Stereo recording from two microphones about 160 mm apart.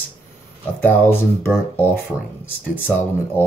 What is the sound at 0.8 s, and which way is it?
Speech, 10° left (ahead or behind).